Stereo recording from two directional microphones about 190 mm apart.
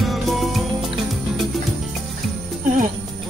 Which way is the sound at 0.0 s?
Centre (ahead or behind).